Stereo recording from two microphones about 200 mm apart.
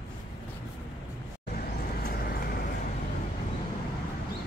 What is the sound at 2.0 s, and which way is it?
Vehicle, 50° left (ahead or behind).